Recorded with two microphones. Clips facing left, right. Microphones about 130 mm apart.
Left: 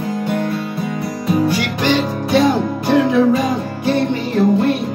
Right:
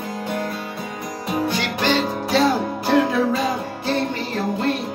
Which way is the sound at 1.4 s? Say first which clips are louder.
Left 4 dB; 10° left (ahead or behind).